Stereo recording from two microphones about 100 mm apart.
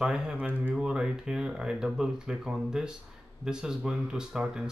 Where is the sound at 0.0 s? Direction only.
5° right (ahead or behind).